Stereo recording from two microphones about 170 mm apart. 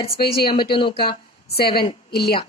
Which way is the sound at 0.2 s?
65° left (ahead or behind).